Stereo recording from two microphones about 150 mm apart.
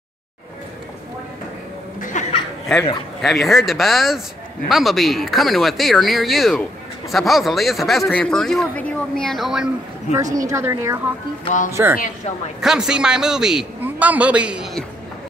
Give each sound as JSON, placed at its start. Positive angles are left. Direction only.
{"t": 2.1, "sound": "chuckle", "side_deg": 55}
{"t": 2.7, "sound": "a man's voice", "side_deg": 5}
{"t": 10.3, "sound": "a woman's voice", "side_deg": -20}
{"t": 12.5, "sound": "a man's voice", "side_deg": -5}